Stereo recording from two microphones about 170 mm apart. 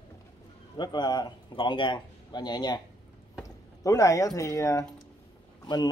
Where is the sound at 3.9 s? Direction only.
20° left (ahead or behind).